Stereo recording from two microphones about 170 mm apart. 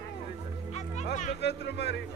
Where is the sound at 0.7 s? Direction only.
45° left (ahead or behind).